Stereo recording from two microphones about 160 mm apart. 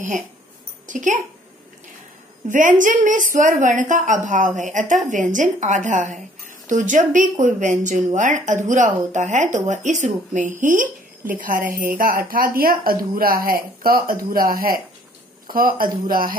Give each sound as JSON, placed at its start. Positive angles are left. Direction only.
{"t": 0.8, "sound": "a woman's voice", "side_deg": -50}
{"t": 2.4, "sound": "a woman's voice", "side_deg": -55}